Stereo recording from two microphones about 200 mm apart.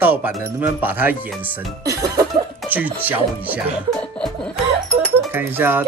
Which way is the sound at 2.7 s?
10° right (ahead or behind).